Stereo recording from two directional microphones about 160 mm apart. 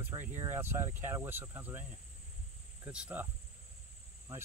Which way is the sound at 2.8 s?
10° right (ahead or behind).